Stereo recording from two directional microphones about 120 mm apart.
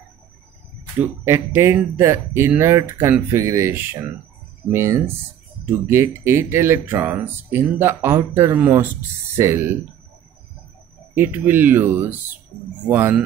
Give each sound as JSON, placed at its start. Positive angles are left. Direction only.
{"t": 0.9, "sound": "speech", "side_deg": -20}
{"t": 11.1, "sound": "speech", "side_deg": -15}